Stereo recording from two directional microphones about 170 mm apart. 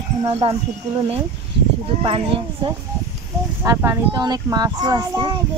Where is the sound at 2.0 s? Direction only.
30° right (ahead or behind).